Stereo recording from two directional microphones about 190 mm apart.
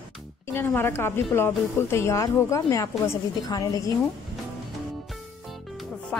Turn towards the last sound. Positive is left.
turn(degrees=5)  # may be behind; listen again after turning